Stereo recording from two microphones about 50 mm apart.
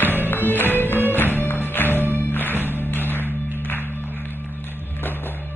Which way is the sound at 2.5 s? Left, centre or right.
Right.